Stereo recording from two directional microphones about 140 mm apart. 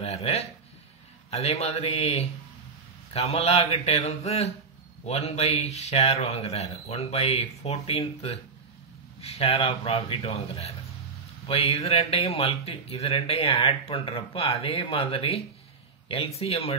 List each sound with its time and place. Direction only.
0.0 s speech: 50° left (ahead or behind)